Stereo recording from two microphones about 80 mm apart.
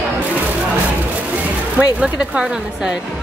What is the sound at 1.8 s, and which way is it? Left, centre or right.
Speech, centre.